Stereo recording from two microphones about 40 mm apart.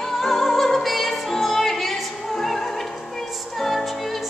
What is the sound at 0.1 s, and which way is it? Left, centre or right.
Music, centre.